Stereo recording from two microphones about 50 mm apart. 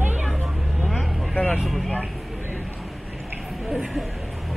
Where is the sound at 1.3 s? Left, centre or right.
Left.